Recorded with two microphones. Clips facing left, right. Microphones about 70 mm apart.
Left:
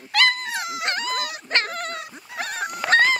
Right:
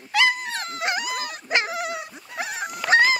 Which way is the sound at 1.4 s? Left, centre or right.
Centre.